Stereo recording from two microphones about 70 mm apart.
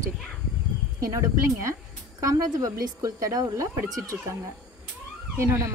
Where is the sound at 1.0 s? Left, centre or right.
Right.